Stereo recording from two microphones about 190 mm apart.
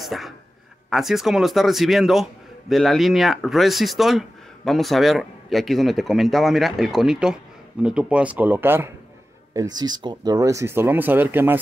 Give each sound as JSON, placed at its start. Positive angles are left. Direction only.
{"t": 0.0, "sound": "speech", "side_deg": 0}